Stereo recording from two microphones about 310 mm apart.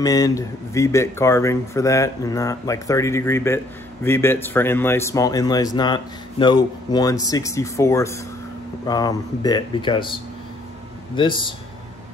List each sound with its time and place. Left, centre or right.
0.0 s speech: centre
11.1 s speech: centre